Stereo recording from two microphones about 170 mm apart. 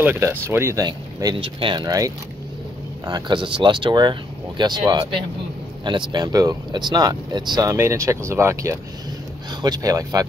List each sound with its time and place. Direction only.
0.0 s speech: 10° right (ahead or behind)